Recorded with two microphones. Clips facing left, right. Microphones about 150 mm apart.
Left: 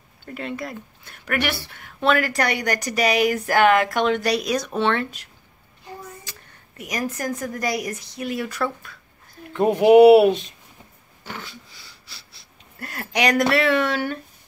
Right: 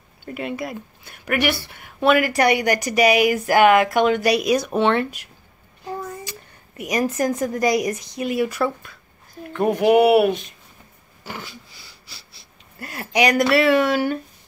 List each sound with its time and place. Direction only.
0.3 s a woman's voice: 10° right (ahead or behind)
6.8 s a woman's voice: 20° right (ahead or behind)
9.6 s speech: 20° left (ahead or behind)
11.2 s a woman's voice: 5° right (ahead or behind)
12.1 s a sound: centre (ahead or behind)
13.5 s speech: 5° right (ahead or behind)